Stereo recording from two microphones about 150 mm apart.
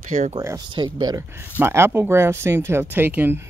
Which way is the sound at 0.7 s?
30° right (ahead or behind).